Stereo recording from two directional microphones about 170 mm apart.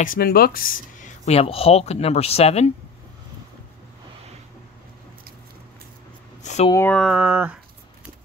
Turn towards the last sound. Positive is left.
turn(degrees=-10)  # may be behind; listen again after turning